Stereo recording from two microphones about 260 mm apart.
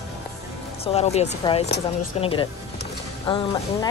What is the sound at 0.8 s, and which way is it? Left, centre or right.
A woman's voice, left.